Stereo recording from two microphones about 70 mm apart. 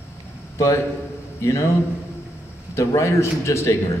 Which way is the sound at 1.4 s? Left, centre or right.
Left.